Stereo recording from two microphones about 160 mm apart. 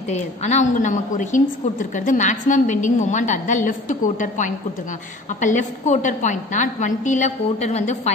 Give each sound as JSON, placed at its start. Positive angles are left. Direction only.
{"t": 0.4, "sound": "a woman's voice", "side_deg": 45}